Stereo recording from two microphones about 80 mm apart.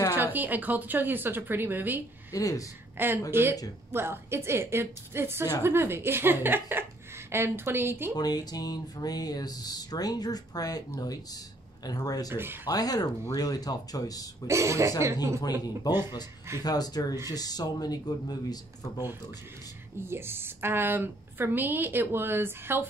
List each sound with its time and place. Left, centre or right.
0.1 s a woman's voice: right
2.3 s speech: left
3.3 s a woman's voice: right
8.2 s speech: left
14.5 s speech: right
16.6 s speech: left
20.0 s a woman's voice: right